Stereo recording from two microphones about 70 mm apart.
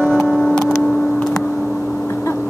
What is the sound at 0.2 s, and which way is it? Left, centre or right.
Music, centre.